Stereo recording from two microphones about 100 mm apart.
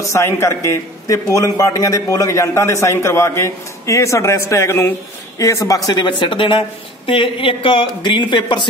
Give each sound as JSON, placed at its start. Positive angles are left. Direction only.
{"t": 0.1, "sound": "a man's voice", "side_deg": 30}
{"t": 5.9, "sound": "speech", "side_deg": 50}